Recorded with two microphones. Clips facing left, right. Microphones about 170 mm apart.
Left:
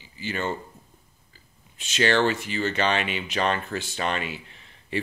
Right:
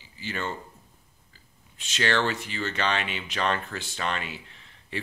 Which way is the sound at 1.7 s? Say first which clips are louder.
Left 4 dB; 10° left (ahead or behind).